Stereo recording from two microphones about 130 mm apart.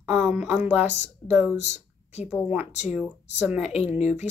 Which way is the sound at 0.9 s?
60° left (ahead or behind).